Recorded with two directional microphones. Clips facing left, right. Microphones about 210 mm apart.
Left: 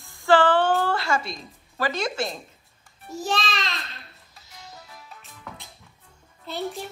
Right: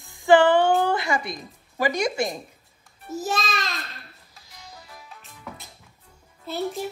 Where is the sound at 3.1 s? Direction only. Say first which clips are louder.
Even; centre (ahead or behind).